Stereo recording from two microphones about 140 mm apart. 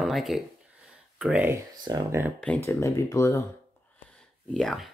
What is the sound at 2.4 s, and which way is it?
Speech, 10° left (ahead or behind).